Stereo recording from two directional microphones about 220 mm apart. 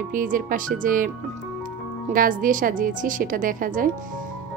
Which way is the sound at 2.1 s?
40° right (ahead or behind).